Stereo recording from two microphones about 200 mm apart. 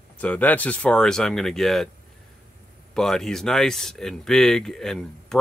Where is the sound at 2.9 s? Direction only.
Centre (ahead or behind).